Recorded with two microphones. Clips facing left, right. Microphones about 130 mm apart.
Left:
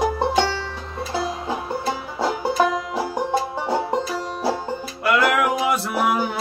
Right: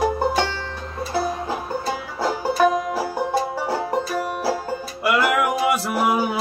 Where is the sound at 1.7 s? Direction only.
20° left (ahead or behind).